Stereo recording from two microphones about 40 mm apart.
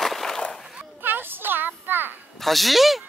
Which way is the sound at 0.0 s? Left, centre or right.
Centre.